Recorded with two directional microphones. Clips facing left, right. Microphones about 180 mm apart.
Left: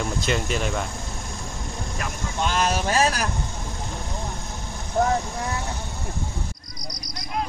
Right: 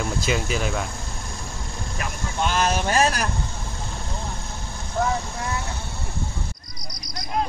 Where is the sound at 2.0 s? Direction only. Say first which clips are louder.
Right 1 dB; centre (ahead or behind).